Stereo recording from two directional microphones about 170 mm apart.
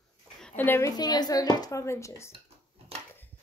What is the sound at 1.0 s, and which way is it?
A woman's voice, 25° left (ahead or behind).